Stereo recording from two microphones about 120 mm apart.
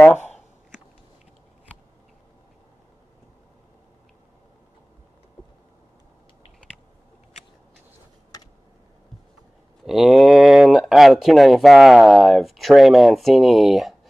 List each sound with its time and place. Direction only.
0.0 s speech: 15° left (ahead or behind)
9.8 s speech: 5° right (ahead or behind)